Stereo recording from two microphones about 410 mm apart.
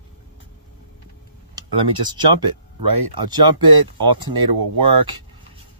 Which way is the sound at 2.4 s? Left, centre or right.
Right.